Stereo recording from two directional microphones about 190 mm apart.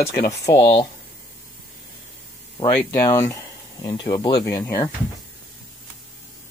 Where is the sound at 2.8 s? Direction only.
15° left (ahead or behind).